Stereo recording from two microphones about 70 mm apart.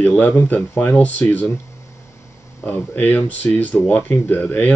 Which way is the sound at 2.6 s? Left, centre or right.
Left.